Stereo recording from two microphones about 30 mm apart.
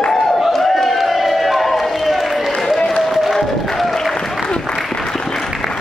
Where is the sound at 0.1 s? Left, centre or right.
Centre.